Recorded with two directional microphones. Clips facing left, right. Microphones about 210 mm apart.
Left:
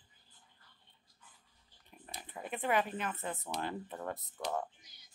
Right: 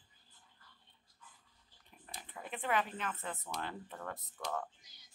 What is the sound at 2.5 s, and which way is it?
Speech, 10° left (ahead or behind).